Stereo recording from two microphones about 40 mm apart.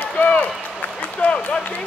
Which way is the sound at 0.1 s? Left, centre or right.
Left.